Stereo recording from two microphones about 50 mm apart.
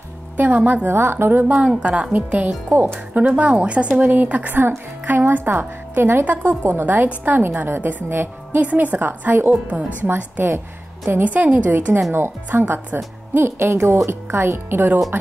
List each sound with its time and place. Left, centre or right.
0.4 s a woman's voice: right
0.8 s a woman's voice: right
1.8 s a woman's voice: right
2.1 s a woman's voice: right
6.2 s speech: right
6.6 s a woman's voice: right
6.9 s speech: right
7.4 s a woman's voice: right
8.6 s a woman's voice: right